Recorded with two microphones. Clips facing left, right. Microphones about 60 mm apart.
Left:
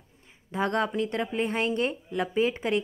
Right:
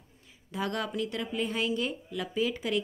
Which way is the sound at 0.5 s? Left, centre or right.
Left.